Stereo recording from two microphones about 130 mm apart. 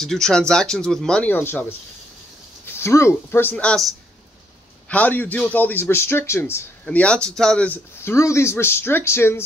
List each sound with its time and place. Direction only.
0.0 s a man's voice: 5° left (ahead or behind); by 9.4 s 20° left (ahead or behind)